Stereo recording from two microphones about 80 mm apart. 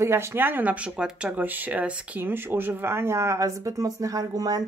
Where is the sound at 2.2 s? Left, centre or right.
Right.